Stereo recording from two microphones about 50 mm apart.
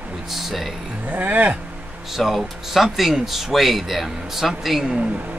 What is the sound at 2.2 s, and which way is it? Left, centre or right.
Speech, centre.